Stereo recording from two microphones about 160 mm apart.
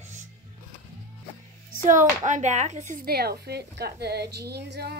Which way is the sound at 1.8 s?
50° right (ahead or behind).